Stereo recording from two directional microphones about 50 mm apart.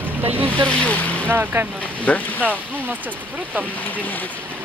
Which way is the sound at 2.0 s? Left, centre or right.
Left.